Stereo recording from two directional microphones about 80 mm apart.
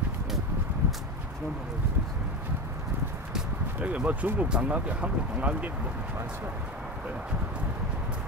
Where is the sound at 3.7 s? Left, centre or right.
Centre.